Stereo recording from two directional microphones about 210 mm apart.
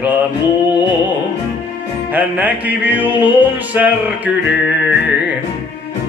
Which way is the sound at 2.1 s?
10° right (ahead or behind).